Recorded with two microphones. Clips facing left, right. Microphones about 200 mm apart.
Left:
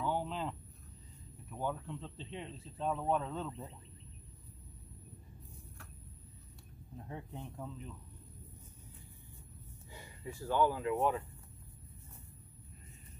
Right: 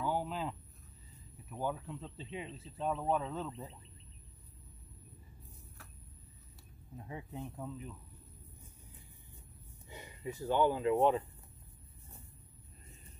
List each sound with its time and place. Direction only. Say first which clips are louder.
0.0 s a sound: even; 5° right (ahead or behind)
1.5 s speech: right 1 dB; 5° right (ahead or behind)
7.0 s speech: right 2 dB; 5° right (ahead or behind)
9.8 s speech: right 4 dB; 20° right (ahead or behind)